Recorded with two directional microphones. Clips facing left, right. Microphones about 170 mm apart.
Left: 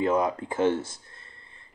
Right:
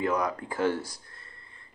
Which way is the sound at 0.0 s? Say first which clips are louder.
Left 4 dB; 25° left (ahead or behind).